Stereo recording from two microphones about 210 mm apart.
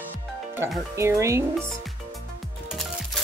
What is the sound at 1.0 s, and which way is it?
Speech, 15° right (ahead or behind).